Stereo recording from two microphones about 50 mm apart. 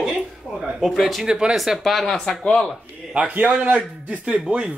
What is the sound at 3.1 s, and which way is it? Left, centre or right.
A man's voice, right.